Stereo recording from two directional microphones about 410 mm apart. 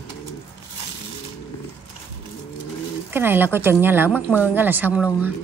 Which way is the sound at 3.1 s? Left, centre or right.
Centre.